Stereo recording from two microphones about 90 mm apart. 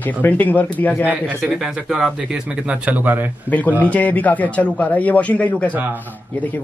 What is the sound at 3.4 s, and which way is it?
Speech, 20° left (ahead or behind).